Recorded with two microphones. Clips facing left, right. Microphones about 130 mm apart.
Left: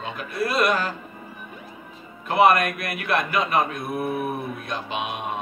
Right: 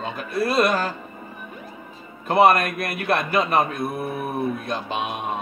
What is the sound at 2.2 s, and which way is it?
A man's voice, 35° right (ahead or behind).